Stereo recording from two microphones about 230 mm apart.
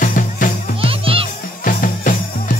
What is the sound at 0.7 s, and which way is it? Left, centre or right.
Music, right.